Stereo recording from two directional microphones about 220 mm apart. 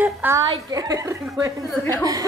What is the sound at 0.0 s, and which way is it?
A woman's voice, 10° right (ahead or behind).